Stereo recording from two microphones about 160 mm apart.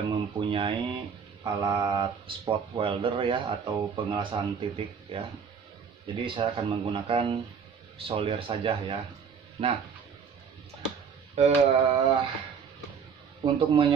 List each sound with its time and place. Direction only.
0.0 s speech: 30° right (ahead or behind)
11.3 s speech: 40° right (ahead or behind)
13.4 s speech: 30° right (ahead or behind)